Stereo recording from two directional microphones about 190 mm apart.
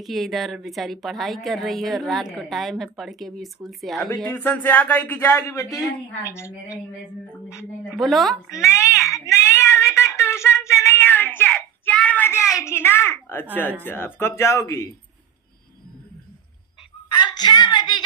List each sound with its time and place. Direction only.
0.0 s a woman's voice: centre (ahead or behind)
7.9 s a woman's voice: centre (ahead or behind)
8.5 s speech: 15° left (ahead or behind)
9.1 s a sound: 15° left (ahead or behind)
13.6 s speech: 10° left (ahead or behind)
17.1 s a woman's voice: 20° left (ahead or behind)